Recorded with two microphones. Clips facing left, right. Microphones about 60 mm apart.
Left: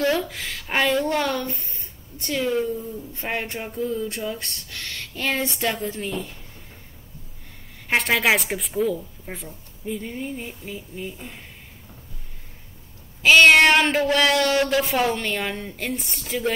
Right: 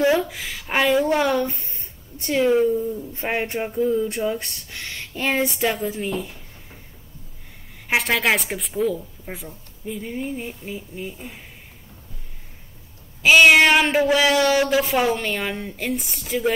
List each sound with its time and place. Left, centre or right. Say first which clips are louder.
0.0 s a woman's voice: right 3 dB; centre
7.9 s a woman's voice: even; centre
13.2 s a woman's voice: even; centre